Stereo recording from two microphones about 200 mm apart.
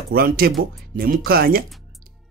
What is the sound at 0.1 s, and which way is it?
Speech, 50° right (ahead or behind).